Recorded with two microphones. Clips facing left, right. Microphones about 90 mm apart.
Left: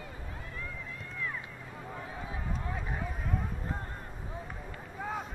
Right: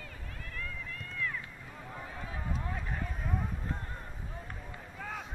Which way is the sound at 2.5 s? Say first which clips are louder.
Even; 5° left (ahead or behind).